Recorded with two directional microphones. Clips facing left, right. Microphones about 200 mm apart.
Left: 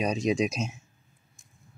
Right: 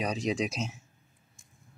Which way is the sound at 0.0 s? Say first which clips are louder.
Left 4 dB; 20° left (ahead or behind).